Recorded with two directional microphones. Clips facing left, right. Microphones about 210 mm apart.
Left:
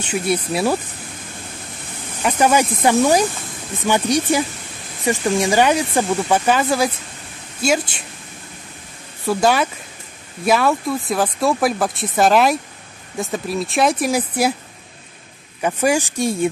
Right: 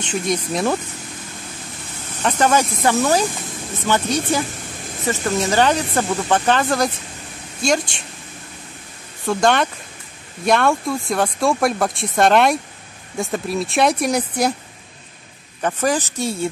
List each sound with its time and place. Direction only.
0.0 s speech: 5° left (ahead or behind)
2.2 s speech: 10° left (ahead or behind)
9.3 s speech: 5° left (ahead or behind)
15.6 s speech: 10° left (ahead or behind)